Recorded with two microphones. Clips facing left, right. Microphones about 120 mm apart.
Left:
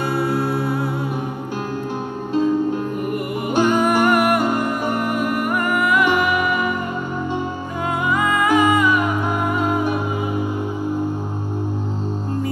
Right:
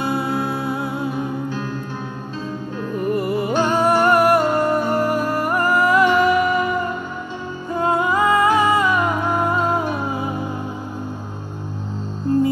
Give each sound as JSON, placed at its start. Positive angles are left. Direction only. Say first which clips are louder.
{"t": 0.0, "sound": "music", "louder": "left 1 dB", "side_deg": -20}
{"t": 3.4, "sound": "music", "louder": "left 3 dB", "side_deg": 15}
{"t": 4.1, "sound": "music", "louder": "right 2 dB", "side_deg": -35}
{"t": 6.0, "sound": "music", "louder": "right 3 dB", "side_deg": 15}
{"t": 7.8, "sound": "music", "louder": "right 3 dB", "side_deg": -35}